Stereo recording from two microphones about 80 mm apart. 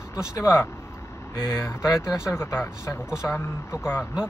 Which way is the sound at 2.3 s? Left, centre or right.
Left.